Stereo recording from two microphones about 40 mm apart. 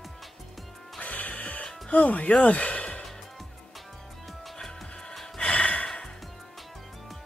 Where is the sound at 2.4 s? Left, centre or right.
Left.